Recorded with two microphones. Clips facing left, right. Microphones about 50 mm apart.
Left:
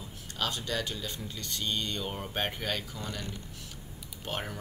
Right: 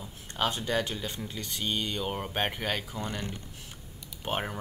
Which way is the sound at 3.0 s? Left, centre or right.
Right.